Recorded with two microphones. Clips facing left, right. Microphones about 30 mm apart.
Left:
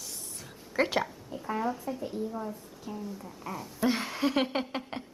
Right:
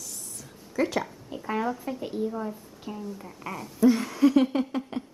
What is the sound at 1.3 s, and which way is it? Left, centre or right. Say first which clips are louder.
A woman's voice: right 3 dB; right.